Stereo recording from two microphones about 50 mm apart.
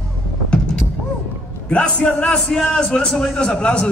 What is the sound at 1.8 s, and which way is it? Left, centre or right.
Speech, left.